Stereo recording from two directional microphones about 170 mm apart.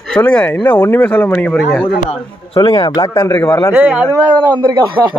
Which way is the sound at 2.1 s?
30° left (ahead or behind).